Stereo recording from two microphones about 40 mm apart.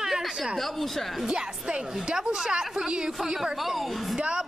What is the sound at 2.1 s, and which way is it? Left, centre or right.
Speech, right.